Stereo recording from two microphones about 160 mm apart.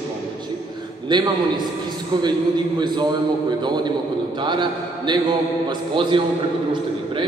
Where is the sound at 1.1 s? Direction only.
30° right (ahead or behind).